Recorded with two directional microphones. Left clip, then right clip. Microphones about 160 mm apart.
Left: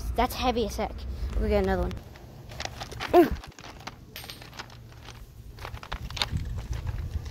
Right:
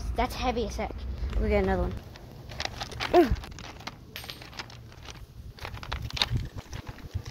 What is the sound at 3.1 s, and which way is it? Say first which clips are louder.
Dog: left 2 dB; 30° left (ahead or behind).